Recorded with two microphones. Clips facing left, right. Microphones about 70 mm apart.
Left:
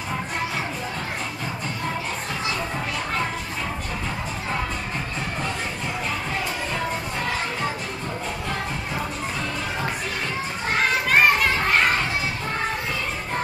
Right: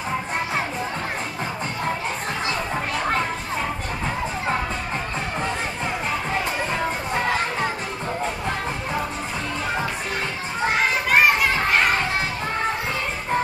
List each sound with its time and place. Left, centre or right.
11.1 s children playing: centre